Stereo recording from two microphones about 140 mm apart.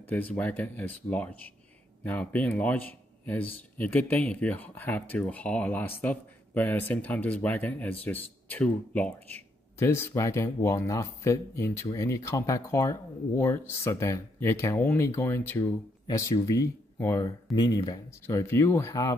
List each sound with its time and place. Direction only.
0.0 s speech: 10° left (ahead or behind)